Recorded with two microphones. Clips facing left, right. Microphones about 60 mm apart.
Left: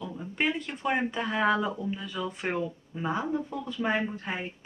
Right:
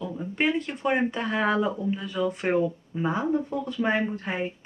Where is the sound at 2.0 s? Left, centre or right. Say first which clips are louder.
Right 6 dB; right.